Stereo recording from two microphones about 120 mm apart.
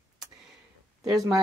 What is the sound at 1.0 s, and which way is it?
Speech, 5° right (ahead or behind).